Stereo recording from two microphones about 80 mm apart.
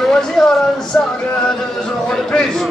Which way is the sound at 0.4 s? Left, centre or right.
Centre.